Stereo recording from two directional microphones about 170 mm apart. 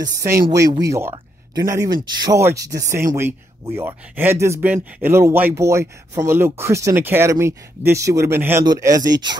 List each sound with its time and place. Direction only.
0.5 s speech: 20° right (ahead or behind)